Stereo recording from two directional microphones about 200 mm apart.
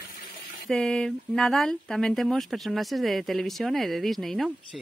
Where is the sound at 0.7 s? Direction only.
5° left (ahead or behind).